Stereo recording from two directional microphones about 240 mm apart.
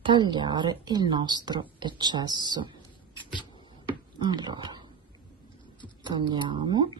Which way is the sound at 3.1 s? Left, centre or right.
Centre.